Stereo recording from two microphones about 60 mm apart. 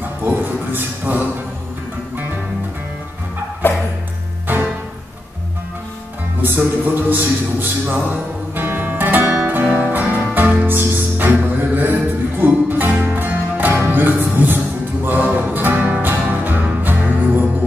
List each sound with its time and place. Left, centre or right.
0.0 s a sound: right
3.6 s music: left
6.4 s music: right
9.8 s music: right